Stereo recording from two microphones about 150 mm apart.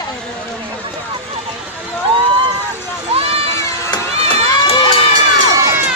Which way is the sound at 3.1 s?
40° right (ahead or behind).